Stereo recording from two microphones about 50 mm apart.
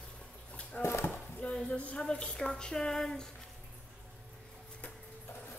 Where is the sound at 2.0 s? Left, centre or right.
Centre.